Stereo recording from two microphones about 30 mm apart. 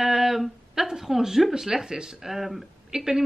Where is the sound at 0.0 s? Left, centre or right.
Centre.